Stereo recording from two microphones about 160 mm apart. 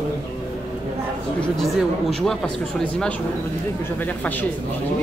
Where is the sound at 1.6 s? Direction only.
Centre (ahead or behind).